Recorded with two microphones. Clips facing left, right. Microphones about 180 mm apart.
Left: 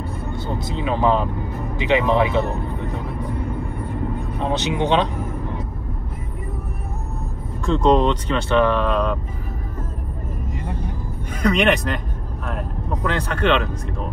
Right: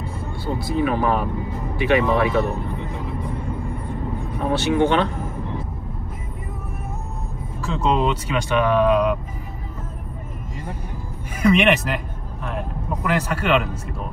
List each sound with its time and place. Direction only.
0.6 s speech: 20° left (ahead or behind)
4.4 s speech: 20° left (ahead or behind)
7.6 s speech: 5° right (ahead or behind)
11.5 s speech: centre (ahead or behind)
12.4 s vehicle: centre (ahead or behind)
13.1 s speech: 10° right (ahead or behind)